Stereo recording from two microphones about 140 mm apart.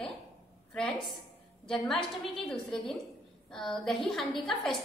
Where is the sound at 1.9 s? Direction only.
Centre (ahead or behind).